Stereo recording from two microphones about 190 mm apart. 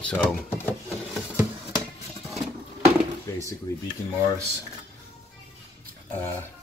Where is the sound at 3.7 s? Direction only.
20° left (ahead or behind).